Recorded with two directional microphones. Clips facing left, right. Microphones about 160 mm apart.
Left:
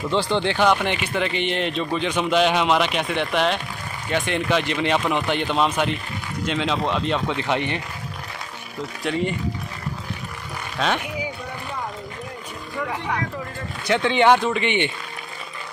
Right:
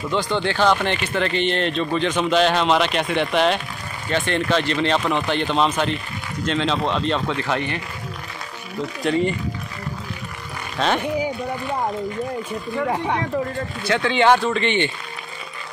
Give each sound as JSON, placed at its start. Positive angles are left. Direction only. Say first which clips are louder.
{"t": 0.1, "sound": "speech", "louder": "even", "side_deg": 25}
{"t": 4.1, "sound": "speech", "louder": "right 1 dB", "side_deg": 10}
{"t": 7.3, "sound": "speech", "louder": "even", "side_deg": 20}
{"t": 9.0, "sound": "speech", "louder": "right 4 dB", "side_deg": 0}
{"t": 12.9, "sound": "speech", "louder": "right 3 dB", "side_deg": -35}
{"t": 13.8, "sound": "speech", "louder": "even", "side_deg": 20}